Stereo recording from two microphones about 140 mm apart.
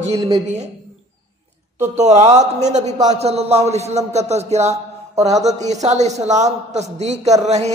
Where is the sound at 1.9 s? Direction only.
55° right (ahead or behind).